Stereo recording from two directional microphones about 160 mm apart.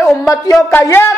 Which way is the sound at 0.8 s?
15° left (ahead or behind).